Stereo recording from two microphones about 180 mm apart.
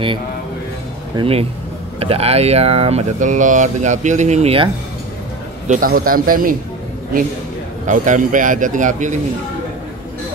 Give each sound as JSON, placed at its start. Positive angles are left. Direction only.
{"t": 1.1, "sound": "speech", "side_deg": -30}
{"t": 5.7, "sound": "a man's voice", "side_deg": -50}
{"t": 7.8, "sound": "a man's voice", "side_deg": -45}